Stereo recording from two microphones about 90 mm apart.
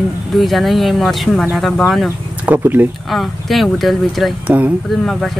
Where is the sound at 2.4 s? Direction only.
20° right (ahead or behind).